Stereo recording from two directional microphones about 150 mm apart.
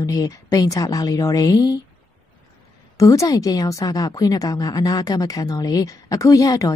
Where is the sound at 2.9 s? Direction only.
20° left (ahead or behind).